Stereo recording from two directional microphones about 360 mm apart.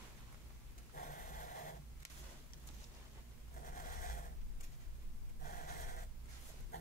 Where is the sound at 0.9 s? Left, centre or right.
Left.